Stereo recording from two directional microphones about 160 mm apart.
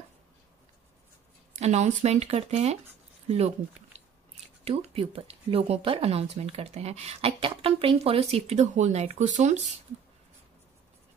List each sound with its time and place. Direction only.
1.5 s speech: 45° right (ahead or behind)
3.9 s biting: 45° right (ahead or behind)
4.6 s speech: 40° right (ahead or behind)